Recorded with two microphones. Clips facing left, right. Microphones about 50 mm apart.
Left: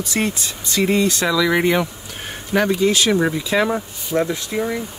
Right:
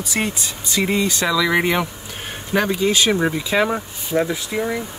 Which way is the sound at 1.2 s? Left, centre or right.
Centre.